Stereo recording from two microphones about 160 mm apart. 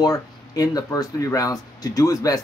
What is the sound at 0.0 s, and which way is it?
Speech, 20° left (ahead or behind).